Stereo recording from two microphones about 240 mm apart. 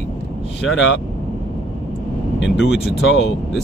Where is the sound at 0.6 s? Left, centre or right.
Left.